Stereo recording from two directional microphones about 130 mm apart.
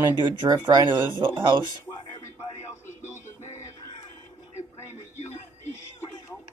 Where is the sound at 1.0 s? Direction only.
15° right (ahead or behind).